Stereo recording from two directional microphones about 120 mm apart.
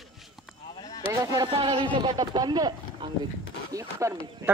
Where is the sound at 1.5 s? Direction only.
45° right (ahead or behind).